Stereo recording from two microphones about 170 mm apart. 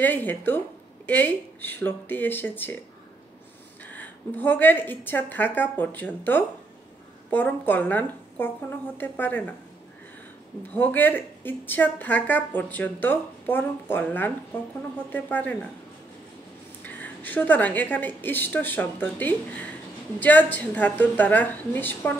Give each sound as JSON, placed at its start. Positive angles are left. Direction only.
{"t": 0.0, "sound": "speech", "side_deg": 10}
{"t": 3.8, "sound": "speech", "side_deg": 10}
{"t": 10.7, "sound": "speech", "side_deg": 10}
{"t": 16.8, "sound": "speech", "side_deg": 10}